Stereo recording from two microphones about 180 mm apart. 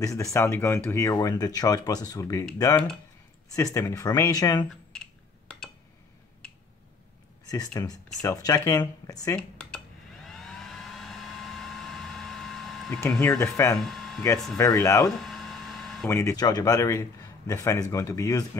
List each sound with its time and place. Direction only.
0.0 s a man's voice: 20° left (ahead or behind)
3.5 s speech: 20° left (ahead or behind)
7.4 s speech: 20° left (ahead or behind)
9.3 s a sound: 5° left (ahead or behind)
10.2 s vehicle: centre (ahead or behind)
13.2 s a man's voice: 15° left (ahead or behind)
13.7 s speech: centre (ahead or behind)
14.6 s a man's voice: 20° left (ahead or behind)
15.0 s a sound: centre (ahead or behind)
16.1 s a man's voice: 15° left (ahead or behind)